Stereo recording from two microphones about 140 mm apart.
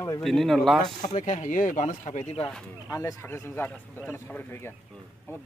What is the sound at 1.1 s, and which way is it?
Speech, 60° left (ahead or behind).